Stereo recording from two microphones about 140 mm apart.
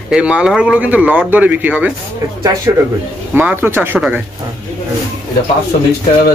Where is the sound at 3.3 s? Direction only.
15° right (ahead or behind).